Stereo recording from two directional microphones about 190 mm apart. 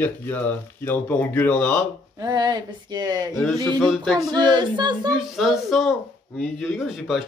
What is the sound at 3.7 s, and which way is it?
Speech, centre (ahead or behind).